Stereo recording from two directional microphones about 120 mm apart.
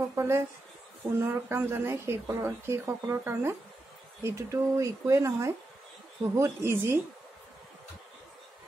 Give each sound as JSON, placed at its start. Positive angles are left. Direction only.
{"t": 0.1, "sound": "speech", "side_deg": -20}